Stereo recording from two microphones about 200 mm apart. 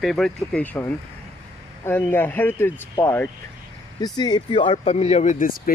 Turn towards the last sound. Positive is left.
turn(degrees=40)  # may be behind; listen again after turning